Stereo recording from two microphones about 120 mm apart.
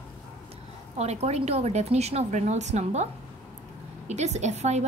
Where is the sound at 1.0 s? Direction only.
65° right (ahead or behind).